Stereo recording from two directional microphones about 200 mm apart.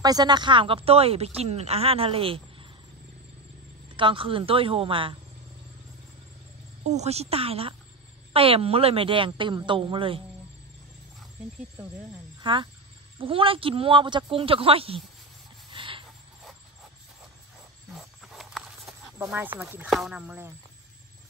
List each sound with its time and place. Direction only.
0.0 s speech: 20° right (ahead or behind)
3.9 s speech: 25° right (ahead or behind)
6.9 s speech: 35° right (ahead or behind)
12.4 s speech: 25° right (ahead or behind)
15.7 s a sound: 25° right (ahead or behind)
17.9 s a sound: centre (ahead or behind)
19.1 s speech: 10° right (ahead or behind)